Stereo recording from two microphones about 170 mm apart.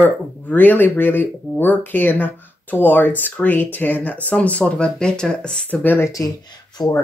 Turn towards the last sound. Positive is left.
turn(degrees=25)  # may be behind; listen again after turning